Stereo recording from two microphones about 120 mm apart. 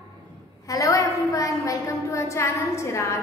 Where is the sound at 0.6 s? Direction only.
25° left (ahead or behind).